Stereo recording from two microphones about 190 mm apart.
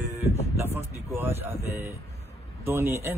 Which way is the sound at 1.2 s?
15° right (ahead or behind).